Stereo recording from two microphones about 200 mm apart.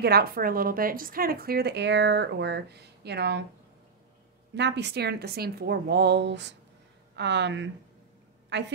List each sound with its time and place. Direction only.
0.0 s a woman's voice: 50° right (ahead or behind)
4.6 s a woman's voice: 60° right (ahead or behind)